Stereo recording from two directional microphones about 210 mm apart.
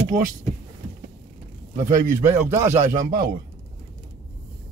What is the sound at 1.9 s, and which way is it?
Speech, 40° right (ahead or behind).